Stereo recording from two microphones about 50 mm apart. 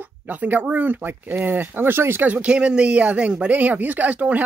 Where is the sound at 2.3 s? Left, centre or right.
Right.